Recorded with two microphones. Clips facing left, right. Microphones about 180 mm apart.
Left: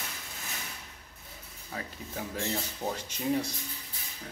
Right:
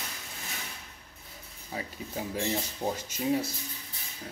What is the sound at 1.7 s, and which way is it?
Speech, 15° right (ahead or behind).